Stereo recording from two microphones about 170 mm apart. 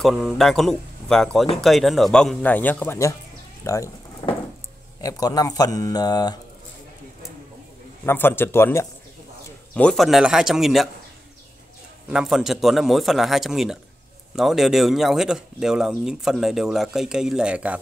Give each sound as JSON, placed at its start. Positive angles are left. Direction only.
{"t": 0.0, "sound": "speech", "side_deg": 0}
{"t": 5.0, "sound": "speech", "side_deg": 20}
{"t": 8.0, "sound": "speech", "side_deg": 15}
{"t": 9.8, "sound": "speech", "side_deg": 5}
{"t": 12.1, "sound": "speech", "side_deg": -5}